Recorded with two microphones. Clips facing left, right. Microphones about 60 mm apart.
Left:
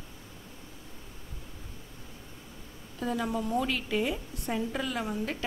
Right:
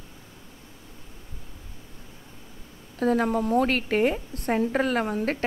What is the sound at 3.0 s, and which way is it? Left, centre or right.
A woman's voice, right.